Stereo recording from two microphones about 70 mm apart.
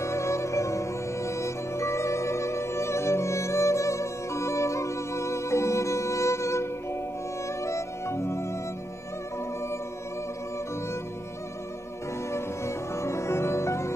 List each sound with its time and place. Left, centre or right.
0.0 s music: left
12.3 s music: left